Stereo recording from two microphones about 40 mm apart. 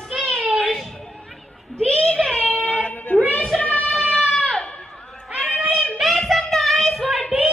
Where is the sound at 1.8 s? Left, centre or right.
Left.